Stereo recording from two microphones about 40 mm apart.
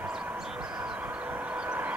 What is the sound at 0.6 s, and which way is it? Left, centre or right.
Train, right.